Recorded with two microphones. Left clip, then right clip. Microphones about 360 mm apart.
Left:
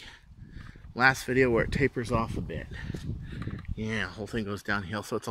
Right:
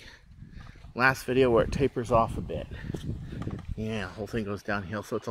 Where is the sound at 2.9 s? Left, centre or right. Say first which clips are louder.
Right 2 dB; right.